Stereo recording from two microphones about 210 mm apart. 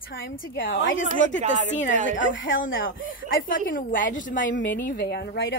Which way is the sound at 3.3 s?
40° left (ahead or behind).